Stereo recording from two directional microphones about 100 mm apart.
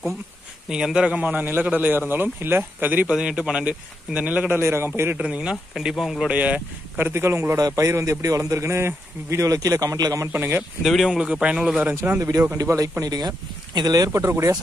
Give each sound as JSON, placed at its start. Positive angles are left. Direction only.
{"t": 0.7, "sound": "a man's voice", "side_deg": -5}
{"t": 4.6, "sound": "speech", "side_deg": -25}
{"t": 5.2, "sound": "a man's voice", "side_deg": -10}
{"t": 10.2, "sound": "speech", "side_deg": -20}
{"t": 10.8, "sound": "speech", "side_deg": 0}
{"t": 12.2, "sound": "a man's voice", "side_deg": -35}